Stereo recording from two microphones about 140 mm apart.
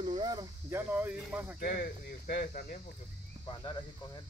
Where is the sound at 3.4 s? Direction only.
35° left (ahead or behind).